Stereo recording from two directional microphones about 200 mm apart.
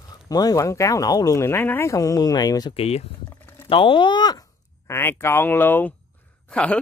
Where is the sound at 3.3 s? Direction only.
10° left (ahead or behind).